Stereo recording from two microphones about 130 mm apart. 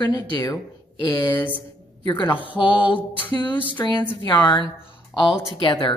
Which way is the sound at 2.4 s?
40° left (ahead or behind).